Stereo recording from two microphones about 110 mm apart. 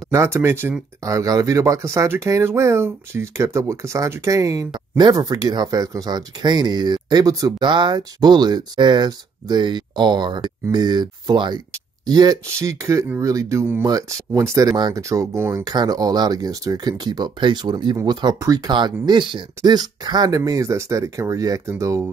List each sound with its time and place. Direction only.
0.1 s speech: 25° right (ahead or behind)
15.0 s speech: 25° right (ahead or behind)
15.6 s speech: 35° right (ahead or behind)